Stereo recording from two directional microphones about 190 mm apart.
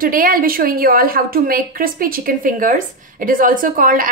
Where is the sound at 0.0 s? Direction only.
50° right (ahead or behind).